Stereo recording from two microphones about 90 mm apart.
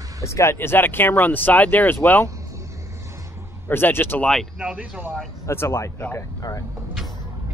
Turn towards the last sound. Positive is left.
turn(degrees=25)  # may be behind; listen again after turning